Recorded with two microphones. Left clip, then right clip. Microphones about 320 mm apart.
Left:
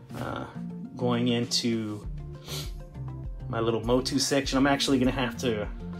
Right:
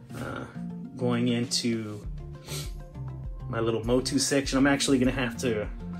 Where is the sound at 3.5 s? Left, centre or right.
Centre.